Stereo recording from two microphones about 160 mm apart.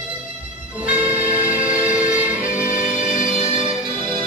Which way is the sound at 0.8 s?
35° right (ahead or behind).